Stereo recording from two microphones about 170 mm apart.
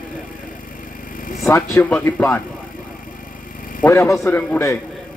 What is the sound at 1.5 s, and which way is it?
Speech, 15° left (ahead or behind).